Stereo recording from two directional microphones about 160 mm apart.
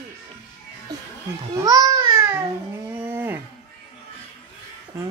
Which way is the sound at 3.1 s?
10° right (ahead or behind).